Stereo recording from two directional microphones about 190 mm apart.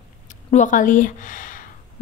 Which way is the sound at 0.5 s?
40° left (ahead or behind).